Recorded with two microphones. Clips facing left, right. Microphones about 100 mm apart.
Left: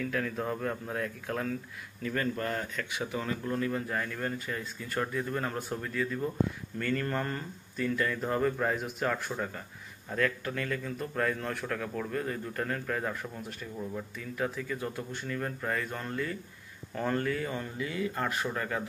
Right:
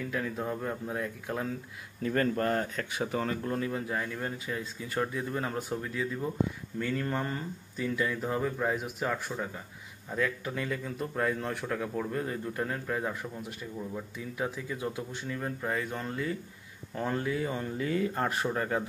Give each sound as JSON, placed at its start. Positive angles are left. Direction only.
{"t": 0.0, "sound": "speech", "side_deg": -10}
{"t": 2.0, "sound": "speech", "side_deg": -40}
{"t": 17.7, "sound": "speech", "side_deg": -40}